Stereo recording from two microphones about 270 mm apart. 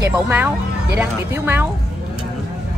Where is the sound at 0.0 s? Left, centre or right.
Centre.